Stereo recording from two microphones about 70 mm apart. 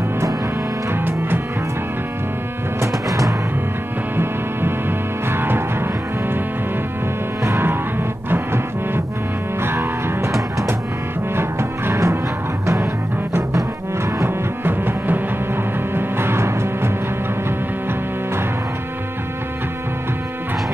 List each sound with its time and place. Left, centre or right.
0.9 s music: right
2.8 s music: right
4.2 s music: right
7.4 s music: right
11.3 s music: right
13.3 s music: right
14.6 s music: right